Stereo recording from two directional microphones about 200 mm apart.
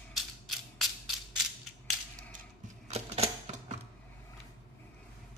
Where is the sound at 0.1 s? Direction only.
Centre (ahead or behind).